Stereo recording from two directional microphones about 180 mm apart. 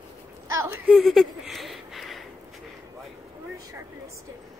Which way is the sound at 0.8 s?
Centre (ahead or behind).